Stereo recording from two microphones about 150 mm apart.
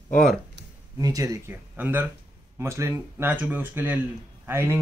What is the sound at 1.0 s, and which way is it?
Speech, 25° right (ahead or behind).